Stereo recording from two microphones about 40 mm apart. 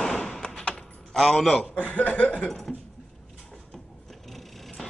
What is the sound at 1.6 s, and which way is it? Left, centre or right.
Speech, left.